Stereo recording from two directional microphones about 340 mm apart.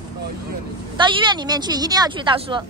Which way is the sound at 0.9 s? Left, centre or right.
Centre.